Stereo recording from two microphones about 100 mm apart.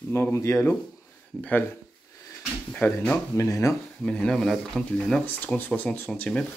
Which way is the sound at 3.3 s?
30° left (ahead or behind).